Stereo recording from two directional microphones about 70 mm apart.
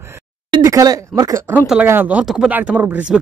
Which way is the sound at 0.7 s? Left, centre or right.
Right.